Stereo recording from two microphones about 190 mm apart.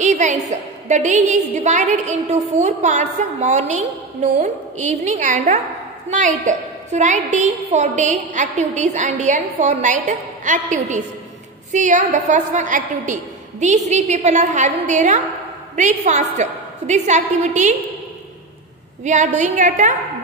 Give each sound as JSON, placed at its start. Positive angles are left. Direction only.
{"t": 0.0, "sound": "a woman's voice", "side_deg": -40}
{"t": 19.0, "sound": "a woman's voice", "side_deg": -40}